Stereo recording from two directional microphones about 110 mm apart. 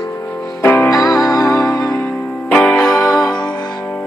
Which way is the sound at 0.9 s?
35° left (ahead or behind).